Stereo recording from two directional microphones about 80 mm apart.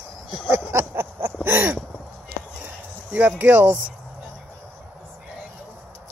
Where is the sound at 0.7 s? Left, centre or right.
Right.